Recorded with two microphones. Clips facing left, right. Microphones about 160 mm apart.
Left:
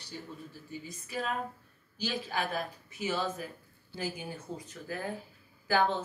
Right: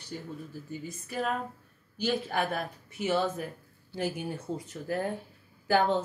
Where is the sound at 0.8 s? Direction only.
50° right (ahead or behind).